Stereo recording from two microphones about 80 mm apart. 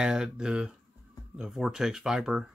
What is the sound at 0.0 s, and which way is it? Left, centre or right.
Speech, centre.